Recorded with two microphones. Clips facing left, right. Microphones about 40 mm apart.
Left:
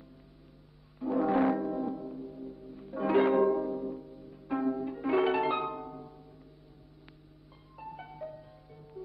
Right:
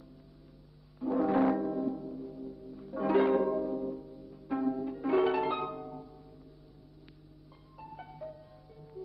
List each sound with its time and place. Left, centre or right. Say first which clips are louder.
1.0 s music: even; centre
1.7 s music: even; centre
4.6 s pizzicato: left 1 dB; centre
5.0 s harp: left 1 dB; centre
5.7 s music: left 1 dB; centre
7.7 s music: left 3 dB; centre